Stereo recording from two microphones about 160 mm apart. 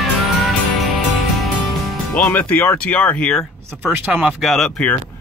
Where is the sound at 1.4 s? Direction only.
5° left (ahead or behind).